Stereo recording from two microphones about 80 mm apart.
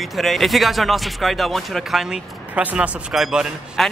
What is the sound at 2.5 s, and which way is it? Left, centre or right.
A man's voice, centre.